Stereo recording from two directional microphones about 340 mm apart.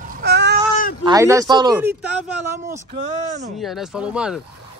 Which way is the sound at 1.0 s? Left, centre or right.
Centre.